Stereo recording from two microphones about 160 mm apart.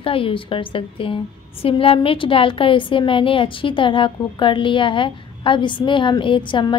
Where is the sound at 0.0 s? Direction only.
35° left (ahead or behind).